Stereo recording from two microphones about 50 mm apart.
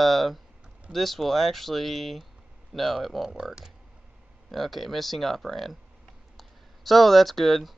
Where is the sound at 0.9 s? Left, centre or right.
Centre.